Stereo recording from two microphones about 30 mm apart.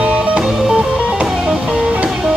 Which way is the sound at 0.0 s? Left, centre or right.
Right.